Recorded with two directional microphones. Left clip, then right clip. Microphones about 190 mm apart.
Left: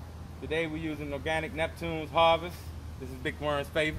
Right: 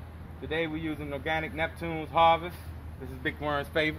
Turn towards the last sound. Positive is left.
turn(degrees=-10)  # may be behind; listen again after turning